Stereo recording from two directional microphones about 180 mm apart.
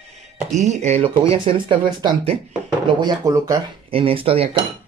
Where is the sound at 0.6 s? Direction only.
40° right (ahead or behind).